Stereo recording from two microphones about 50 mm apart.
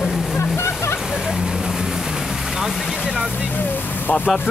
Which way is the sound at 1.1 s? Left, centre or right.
Centre.